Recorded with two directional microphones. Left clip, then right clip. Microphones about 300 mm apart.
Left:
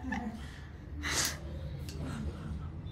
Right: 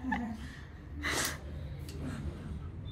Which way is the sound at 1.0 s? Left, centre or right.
Centre.